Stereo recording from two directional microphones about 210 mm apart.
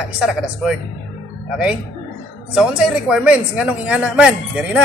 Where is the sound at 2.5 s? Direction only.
5° right (ahead or behind).